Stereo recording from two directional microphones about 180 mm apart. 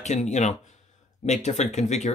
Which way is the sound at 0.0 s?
40° left (ahead or behind).